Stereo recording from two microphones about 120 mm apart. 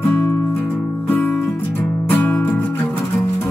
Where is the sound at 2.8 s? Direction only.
Centre (ahead or behind).